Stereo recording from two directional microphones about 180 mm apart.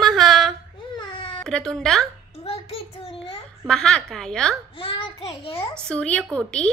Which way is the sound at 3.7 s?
5° left (ahead or behind).